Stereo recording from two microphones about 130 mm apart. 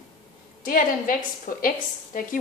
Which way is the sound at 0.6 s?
90° left.